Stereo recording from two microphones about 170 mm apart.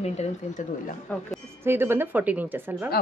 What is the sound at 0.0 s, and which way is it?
Speech, 40° left (ahead or behind).